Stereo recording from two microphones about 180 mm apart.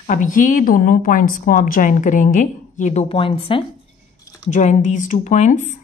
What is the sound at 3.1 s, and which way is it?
Speech, 30° left (ahead or behind).